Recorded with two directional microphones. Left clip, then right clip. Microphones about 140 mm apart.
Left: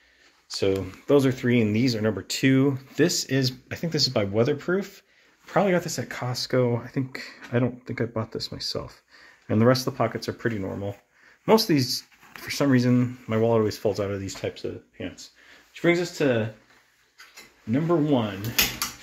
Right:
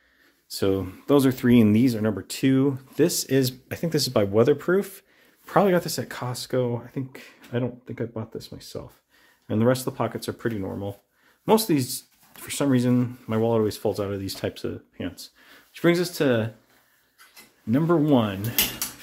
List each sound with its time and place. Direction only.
0.5 s speech: 35° right (ahead or behind)
2.0 s speech: 10° right (ahead or behind)
3.1 s speech: 25° right (ahead or behind); by 5.0 s 40° right (ahead or behind)
5.5 s speech: 30° right (ahead or behind); by 6.4 s 15° right (ahead or behind)
6.4 s speech: 5° left (ahead or behind)
9.5 s speech: centre (ahead or behind)
14.4 s speech: 45° right (ahead or behind)
15.7 s speech: 45° right (ahead or behind)
17.6 s speech: 45° right (ahead or behind)